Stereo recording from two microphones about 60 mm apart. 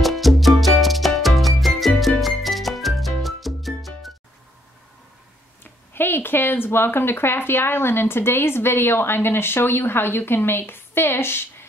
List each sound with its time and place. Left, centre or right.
0.0 s music: centre
5.6 s speech: left